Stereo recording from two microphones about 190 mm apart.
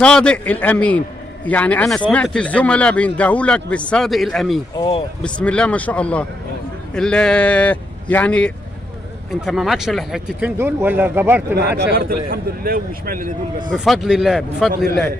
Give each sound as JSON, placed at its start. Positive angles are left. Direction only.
{"t": 0.0, "sound": "a man's voice", "side_deg": 5}
{"t": 4.7, "sound": "speech", "side_deg": 30}
{"t": 5.2, "sound": "a man's voice", "side_deg": 5}
{"t": 11.8, "sound": "a man's voice", "side_deg": -55}
{"t": 13.7, "sound": "speech", "side_deg": 0}